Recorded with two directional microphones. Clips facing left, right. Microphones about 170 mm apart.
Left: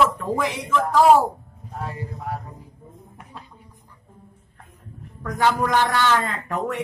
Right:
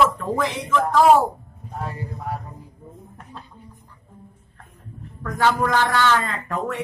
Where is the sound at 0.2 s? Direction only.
10° left (ahead or behind).